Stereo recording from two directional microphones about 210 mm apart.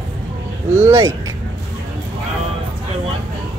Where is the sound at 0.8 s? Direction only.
15° right (ahead or behind).